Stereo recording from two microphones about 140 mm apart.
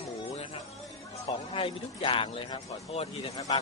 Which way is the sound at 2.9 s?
50° left (ahead or behind).